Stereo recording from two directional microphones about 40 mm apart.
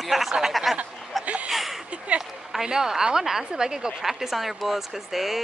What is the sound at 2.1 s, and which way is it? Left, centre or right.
Speech, right.